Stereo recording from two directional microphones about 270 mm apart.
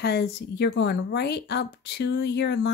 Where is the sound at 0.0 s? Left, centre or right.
Left.